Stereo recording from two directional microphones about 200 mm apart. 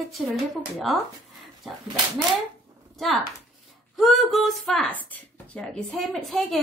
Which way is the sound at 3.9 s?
Centre (ahead or behind).